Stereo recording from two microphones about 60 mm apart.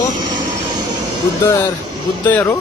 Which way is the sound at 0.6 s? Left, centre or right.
Right.